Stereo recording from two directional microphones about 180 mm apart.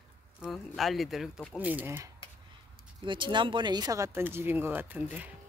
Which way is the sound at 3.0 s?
25° right (ahead or behind).